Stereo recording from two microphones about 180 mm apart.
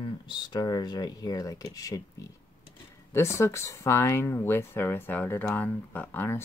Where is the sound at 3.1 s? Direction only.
15° left (ahead or behind).